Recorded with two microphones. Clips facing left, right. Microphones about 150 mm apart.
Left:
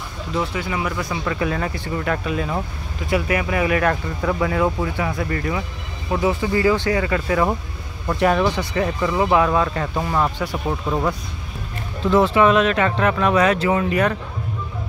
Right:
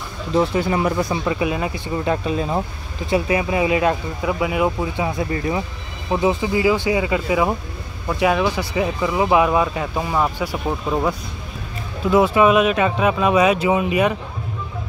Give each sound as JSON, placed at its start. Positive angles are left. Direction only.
{"t": 0.3, "sound": "speech", "side_deg": -25}
{"t": 1.2, "sound": "speech", "side_deg": -15}